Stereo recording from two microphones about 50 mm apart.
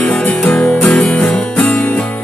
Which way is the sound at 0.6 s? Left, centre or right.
Left.